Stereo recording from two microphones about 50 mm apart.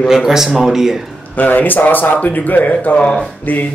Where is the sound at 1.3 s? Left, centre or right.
Left.